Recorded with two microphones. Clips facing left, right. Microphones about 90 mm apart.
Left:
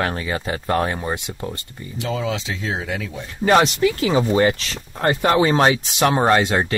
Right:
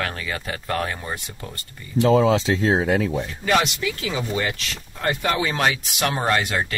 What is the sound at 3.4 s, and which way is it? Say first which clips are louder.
Speech: left 7 dB; 35° left (ahead or behind).